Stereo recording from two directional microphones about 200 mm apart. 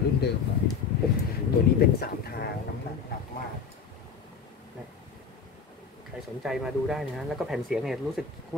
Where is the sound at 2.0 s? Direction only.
50° left (ahead or behind).